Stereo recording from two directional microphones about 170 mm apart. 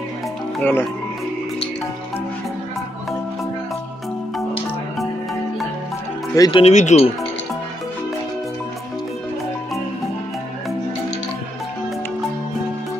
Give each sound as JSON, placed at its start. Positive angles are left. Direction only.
{"t": 0.6, "sound": "speech", "side_deg": 10}
{"t": 6.3, "sound": "speech", "side_deg": 20}
{"t": 6.6, "sound": "speech", "side_deg": 45}